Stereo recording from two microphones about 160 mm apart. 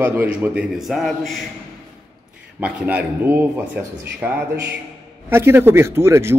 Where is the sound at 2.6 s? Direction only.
10° right (ahead or behind).